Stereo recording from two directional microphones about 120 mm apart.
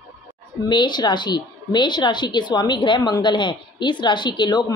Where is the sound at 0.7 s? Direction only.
40° left (ahead or behind).